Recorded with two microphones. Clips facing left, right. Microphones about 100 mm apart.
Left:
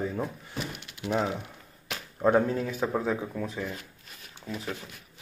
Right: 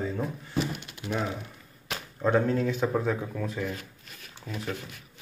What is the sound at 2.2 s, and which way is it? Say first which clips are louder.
Speech: left 1 dB; 15° left (ahead or behind).